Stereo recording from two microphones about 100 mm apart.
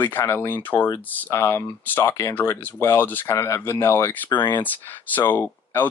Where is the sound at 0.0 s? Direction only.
20° left (ahead or behind).